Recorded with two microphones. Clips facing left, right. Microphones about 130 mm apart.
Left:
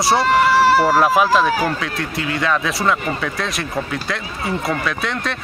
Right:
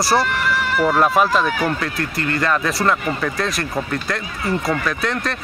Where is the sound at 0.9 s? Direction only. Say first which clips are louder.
Left 2 dB; 5° left (ahead or behind).